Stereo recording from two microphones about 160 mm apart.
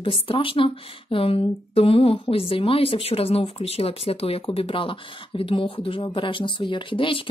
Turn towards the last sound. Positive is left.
turn(degrees=30)  # may be behind; listen again after turning